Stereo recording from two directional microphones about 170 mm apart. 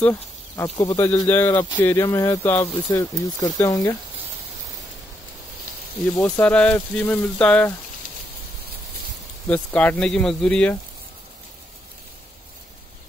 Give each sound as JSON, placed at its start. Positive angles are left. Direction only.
{"t": 0.0, "sound": "speech", "side_deg": 15}
{"t": 6.2, "sound": "speech", "side_deg": 5}
{"t": 9.5, "sound": "speech", "side_deg": 10}